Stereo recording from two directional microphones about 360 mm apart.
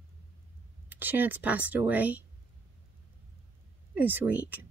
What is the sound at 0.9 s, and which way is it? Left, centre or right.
Speech, centre.